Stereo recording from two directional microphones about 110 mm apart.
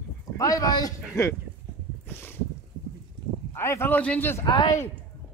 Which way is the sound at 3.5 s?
25° left (ahead or behind).